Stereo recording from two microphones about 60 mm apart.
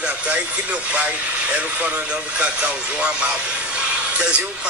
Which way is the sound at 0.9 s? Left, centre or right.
Right.